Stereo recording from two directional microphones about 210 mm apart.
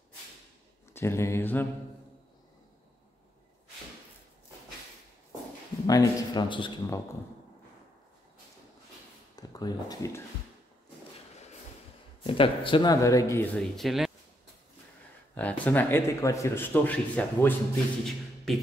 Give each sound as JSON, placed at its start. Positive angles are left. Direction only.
{"t": 0.9, "sound": "speech", "side_deg": 10}
{"t": 5.9, "sound": "speech", "side_deg": 20}
{"t": 9.3, "sound": "speech", "side_deg": 20}
{"t": 12.2, "sound": "speech", "side_deg": 25}
{"t": 15.3, "sound": "a man's voice", "side_deg": 5}